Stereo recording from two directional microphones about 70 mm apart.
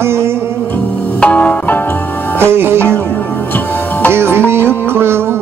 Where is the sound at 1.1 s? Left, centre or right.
Centre.